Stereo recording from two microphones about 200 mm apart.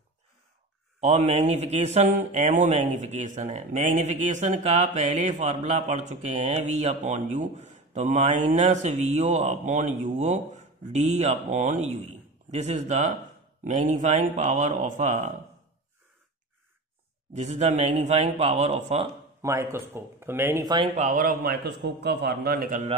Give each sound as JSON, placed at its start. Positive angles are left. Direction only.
{"t": 1.0, "sound": "a man's voice", "side_deg": -30}
{"t": 17.3, "sound": "a man's voice", "side_deg": -35}
{"t": 19.4, "sound": "a man's voice", "side_deg": -15}